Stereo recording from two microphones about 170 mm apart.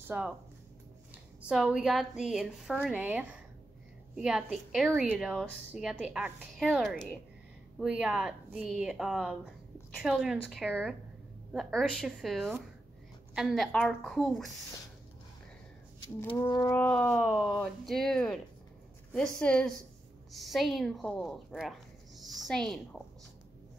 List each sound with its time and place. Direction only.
0.1 s speech: 10° right (ahead or behind)
1.5 s a woman's voice: 5° right (ahead or behind)
11.5 s a woman's voice: 5° left (ahead or behind)
16.3 s speech: 25° left (ahead or behind)
16.7 s a woman's voice: 10° left (ahead or behind)